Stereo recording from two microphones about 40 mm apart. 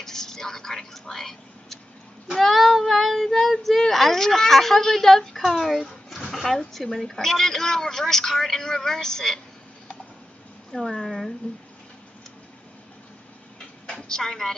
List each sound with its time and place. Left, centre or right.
0.0 s a woman's voice: centre
10.7 s a woman's voice: centre
13.8 s a woman's voice: centre